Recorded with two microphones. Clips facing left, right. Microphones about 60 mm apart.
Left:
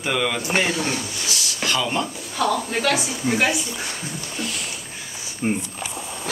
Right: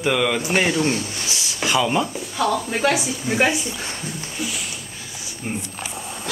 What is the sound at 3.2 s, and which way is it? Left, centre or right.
Speech, left.